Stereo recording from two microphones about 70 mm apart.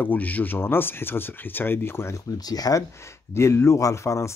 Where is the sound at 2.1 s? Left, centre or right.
Left.